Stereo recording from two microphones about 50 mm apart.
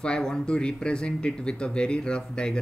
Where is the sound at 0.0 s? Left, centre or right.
Centre.